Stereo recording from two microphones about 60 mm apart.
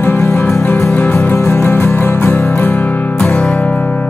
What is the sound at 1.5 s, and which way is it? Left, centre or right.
Music, left.